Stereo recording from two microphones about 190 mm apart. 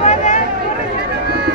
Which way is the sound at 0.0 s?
40° left (ahead or behind).